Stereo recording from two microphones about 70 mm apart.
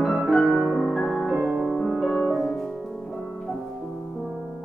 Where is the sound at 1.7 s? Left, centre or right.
Centre.